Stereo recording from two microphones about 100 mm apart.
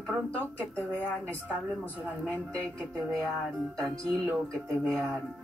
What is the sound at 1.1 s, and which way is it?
A woman's voice, 15° left (ahead or behind).